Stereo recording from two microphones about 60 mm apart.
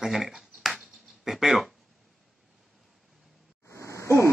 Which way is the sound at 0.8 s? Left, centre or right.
Centre.